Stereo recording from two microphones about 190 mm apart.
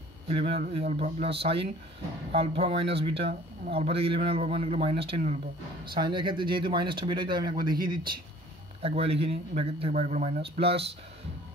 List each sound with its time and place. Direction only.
0.4 s speech: 30° right (ahead or behind)
5.9 s speech: 25° right (ahead or behind)